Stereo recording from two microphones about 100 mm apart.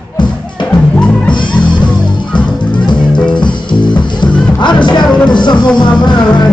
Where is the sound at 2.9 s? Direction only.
50° left (ahead or behind).